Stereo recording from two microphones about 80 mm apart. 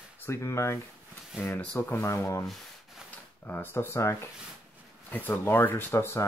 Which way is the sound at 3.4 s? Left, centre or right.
Left.